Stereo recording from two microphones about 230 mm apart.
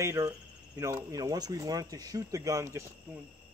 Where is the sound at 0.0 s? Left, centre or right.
Centre.